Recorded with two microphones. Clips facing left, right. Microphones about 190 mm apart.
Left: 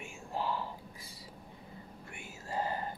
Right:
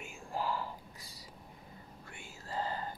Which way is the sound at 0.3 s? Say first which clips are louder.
Even; 20° left (ahead or behind).